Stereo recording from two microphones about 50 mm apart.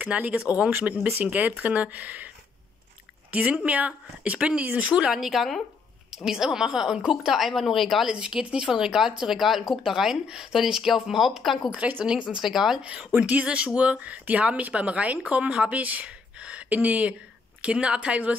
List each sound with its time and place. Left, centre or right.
0.0 s speech: right
0.7 s speech: right
3.3 s speech: right; by 7.3 s centre
7.3 s speech: centre
8.1 s speech: centre
12.0 s speech: right
12.4 s speech: centre
12.8 s speech: right
17.6 s speech: right